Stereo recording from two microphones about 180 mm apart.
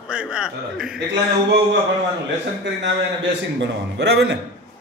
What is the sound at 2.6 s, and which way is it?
A man's voice, 80° right.